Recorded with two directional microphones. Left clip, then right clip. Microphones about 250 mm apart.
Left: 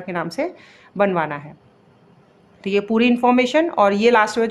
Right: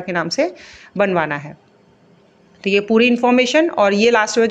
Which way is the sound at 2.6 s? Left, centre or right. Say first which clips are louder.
Right 4 dB; centre.